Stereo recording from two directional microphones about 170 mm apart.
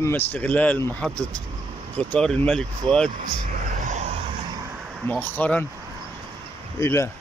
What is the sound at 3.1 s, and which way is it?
Vehicle, 50° right (ahead or behind).